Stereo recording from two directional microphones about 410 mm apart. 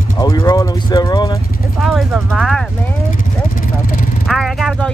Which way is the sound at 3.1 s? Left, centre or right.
Centre.